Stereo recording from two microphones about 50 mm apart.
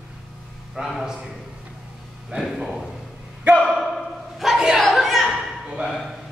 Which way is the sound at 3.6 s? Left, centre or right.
Centre.